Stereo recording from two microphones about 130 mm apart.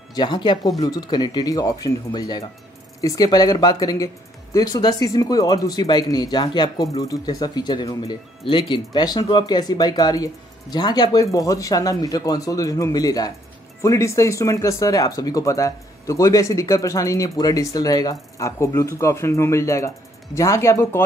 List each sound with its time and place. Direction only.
0.1 s speech: 35° left (ahead or behind)